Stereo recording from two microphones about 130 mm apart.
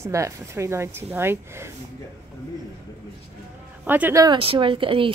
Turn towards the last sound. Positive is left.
turn(degrees=-45)  # may be behind; listen again after turning